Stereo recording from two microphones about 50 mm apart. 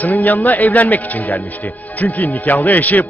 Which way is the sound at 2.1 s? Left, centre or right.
Left.